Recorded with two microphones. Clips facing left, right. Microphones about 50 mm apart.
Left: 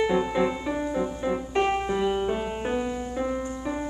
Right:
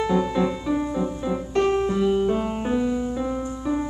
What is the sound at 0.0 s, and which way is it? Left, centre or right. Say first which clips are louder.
Music: right 1 dB; centre.